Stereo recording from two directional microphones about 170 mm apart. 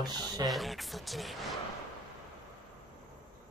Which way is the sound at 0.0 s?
25° right (ahead or behind).